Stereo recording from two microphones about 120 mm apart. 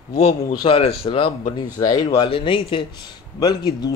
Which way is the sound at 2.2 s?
45° left (ahead or behind).